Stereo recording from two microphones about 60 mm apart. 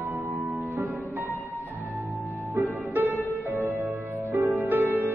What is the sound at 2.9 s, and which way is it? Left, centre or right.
Music, right.